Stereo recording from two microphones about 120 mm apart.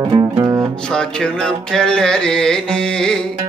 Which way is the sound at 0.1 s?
30° right (ahead or behind).